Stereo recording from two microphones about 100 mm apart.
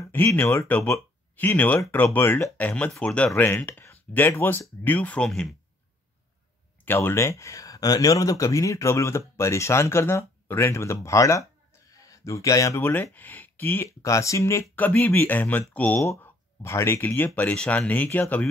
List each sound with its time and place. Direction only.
0.1 s speech: 20° left (ahead or behind)
6.8 s speech: 20° left (ahead or behind)
11.9 s a sound: 35° left (ahead or behind)
12.8 s speech: 20° left (ahead or behind)
14.0 s speech: 30° left (ahead or behind)
14.8 s speech: 15° left (ahead or behind)